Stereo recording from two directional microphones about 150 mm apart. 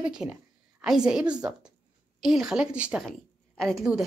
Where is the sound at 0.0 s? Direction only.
5° right (ahead or behind).